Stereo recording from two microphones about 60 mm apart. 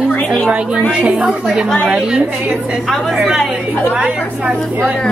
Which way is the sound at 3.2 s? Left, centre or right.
Centre.